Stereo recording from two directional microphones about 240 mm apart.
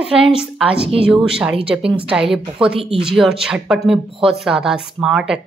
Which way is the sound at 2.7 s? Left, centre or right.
Right.